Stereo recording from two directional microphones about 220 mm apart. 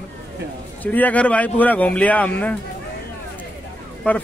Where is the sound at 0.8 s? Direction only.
5° left (ahead or behind).